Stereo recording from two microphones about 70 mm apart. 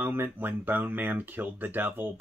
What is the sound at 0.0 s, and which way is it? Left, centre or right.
Speech, right.